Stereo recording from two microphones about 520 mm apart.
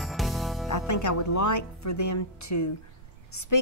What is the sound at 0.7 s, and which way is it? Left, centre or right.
A woman's voice, left.